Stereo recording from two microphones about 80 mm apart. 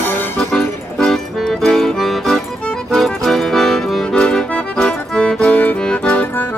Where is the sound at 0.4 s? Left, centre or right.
Centre.